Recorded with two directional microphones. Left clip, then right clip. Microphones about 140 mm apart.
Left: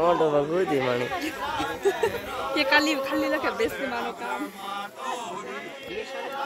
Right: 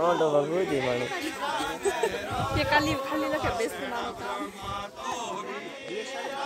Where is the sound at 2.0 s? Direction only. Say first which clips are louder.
Left 1 dB; 35° right (ahead or behind).